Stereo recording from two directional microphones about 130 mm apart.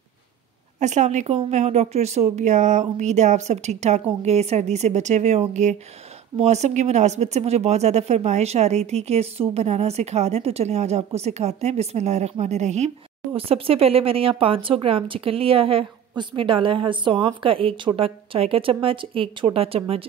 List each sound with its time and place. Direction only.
0.7 s speech: 65° right (ahead or behind)
13.3 s speech: 45° right (ahead or behind)